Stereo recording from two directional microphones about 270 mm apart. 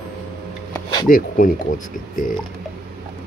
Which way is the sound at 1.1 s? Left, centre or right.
Left.